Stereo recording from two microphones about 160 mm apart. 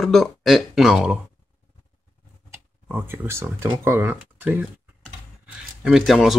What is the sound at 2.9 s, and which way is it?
Speech, 10° right (ahead or behind).